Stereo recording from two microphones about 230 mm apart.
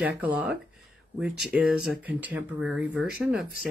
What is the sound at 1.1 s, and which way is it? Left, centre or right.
Speech, centre.